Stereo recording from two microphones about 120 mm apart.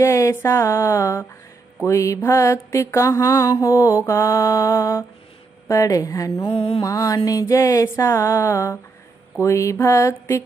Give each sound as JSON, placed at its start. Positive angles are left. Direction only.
{"t": 0.0, "sound": "mantra", "side_deg": 25}
{"t": 6.4, "sound": "mantra", "side_deg": 50}
{"t": 6.8, "sound": "mantra", "side_deg": 30}